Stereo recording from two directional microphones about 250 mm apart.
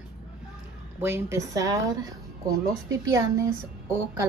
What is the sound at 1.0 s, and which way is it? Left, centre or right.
Speech, centre.